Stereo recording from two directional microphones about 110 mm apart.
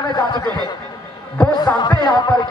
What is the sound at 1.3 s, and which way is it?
Music, 40° left (ahead or behind).